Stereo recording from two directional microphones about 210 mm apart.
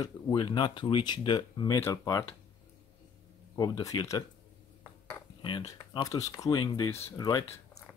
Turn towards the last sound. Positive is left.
turn(degrees=20)  # may be behind; listen again after turning